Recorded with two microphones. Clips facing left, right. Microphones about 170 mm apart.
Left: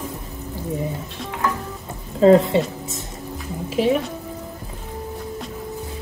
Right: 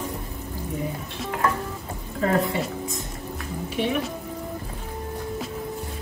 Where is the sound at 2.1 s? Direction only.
25° left (ahead or behind).